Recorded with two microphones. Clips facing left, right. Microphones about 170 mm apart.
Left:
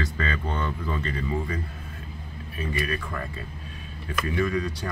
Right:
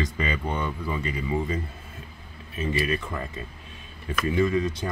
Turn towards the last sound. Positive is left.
turn(degrees=-20)  # may be behind; listen again after turning